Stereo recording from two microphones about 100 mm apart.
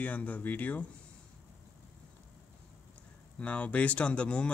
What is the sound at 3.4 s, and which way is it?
Speech, 15° left (ahead or behind).